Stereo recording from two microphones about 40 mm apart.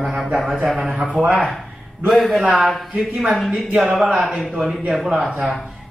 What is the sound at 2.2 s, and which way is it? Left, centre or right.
Speech, centre.